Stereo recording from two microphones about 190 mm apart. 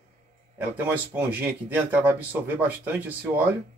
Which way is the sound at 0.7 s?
10° right (ahead or behind).